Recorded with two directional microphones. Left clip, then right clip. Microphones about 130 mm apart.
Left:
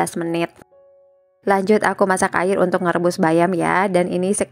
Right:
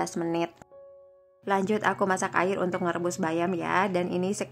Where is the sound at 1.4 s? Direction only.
40° left (ahead or behind).